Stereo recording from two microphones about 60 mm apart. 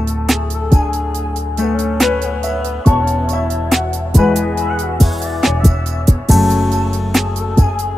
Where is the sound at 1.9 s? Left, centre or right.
Centre.